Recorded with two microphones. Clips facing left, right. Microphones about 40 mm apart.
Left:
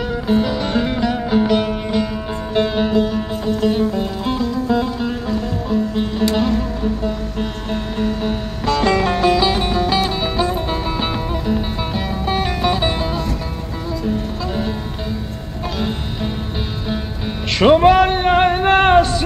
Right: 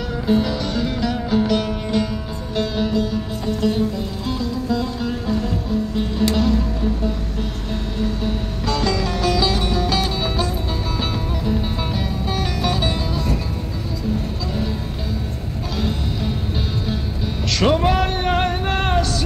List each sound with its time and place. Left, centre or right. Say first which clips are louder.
0.1 s music: even; centre
0.7 s music: left 4 dB; left
2.5 s music: left 4 dB; left
3.9 s music: left 5 dB; left; by 10.5 s centre
10.5 s music: left 4 dB; left
11.4 s music: left 2 dB; centre
17.6 s music: left 7 dB; left
18.0 s a sound: left 6 dB; centre